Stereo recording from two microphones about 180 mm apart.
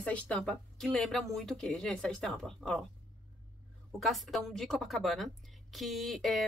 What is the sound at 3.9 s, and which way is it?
A woman's voice, centre (ahead or behind).